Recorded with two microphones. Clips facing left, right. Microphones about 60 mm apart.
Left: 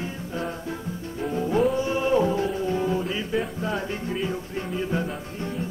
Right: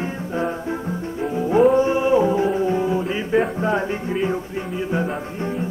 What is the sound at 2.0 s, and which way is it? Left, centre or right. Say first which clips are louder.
Music: right 5 dB; centre.